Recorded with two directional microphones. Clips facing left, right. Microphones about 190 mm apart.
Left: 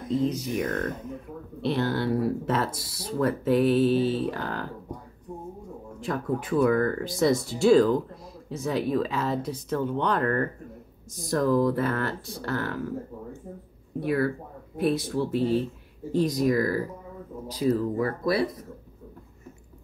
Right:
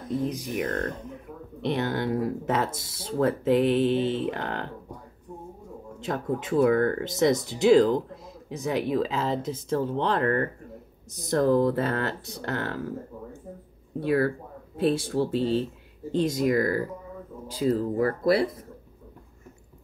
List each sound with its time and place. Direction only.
0.2 s speech: 15° right (ahead or behind)
0.7 s speech: 5° left (ahead or behind)
1.6 s speech: 20° right (ahead or behind)
5.9 s speech: 20° right (ahead or behind)
13.9 s speech: 30° right (ahead or behind)